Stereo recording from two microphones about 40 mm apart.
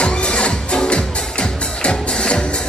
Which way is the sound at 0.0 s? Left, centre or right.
Left.